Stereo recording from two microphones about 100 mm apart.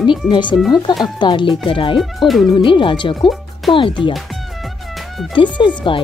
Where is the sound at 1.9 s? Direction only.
Centre (ahead or behind).